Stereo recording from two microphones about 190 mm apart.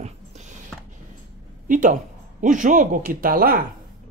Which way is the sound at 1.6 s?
45° right (ahead or behind).